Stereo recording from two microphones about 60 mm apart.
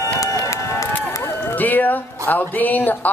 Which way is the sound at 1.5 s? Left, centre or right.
Left.